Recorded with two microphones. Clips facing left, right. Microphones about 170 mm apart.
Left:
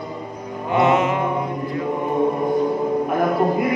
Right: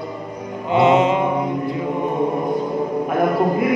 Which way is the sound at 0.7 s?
20° right (ahead or behind).